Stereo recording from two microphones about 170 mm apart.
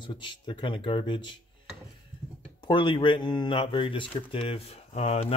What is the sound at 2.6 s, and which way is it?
Speech, 30° left (ahead or behind).